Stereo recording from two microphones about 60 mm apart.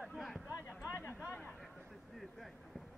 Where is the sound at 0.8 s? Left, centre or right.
Left.